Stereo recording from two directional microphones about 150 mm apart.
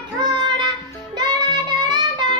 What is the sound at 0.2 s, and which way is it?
Child singing, 30° right (ahead or behind).